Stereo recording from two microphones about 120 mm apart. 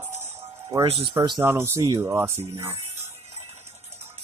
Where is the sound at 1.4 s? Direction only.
25° right (ahead or behind).